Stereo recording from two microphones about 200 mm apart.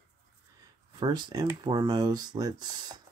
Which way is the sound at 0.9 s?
25° right (ahead or behind).